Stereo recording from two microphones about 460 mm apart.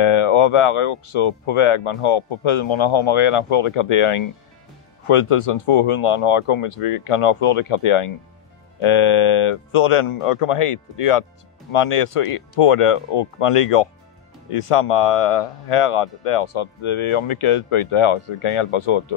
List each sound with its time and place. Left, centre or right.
0.0 s speech: left